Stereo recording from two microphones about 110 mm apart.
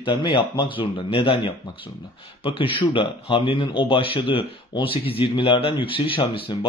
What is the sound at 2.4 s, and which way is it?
Speech, 55° left (ahead or behind).